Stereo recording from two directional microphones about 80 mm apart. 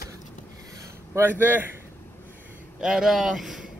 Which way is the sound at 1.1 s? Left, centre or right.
Right.